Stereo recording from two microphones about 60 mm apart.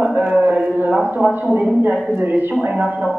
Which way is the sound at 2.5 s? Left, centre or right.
Centre.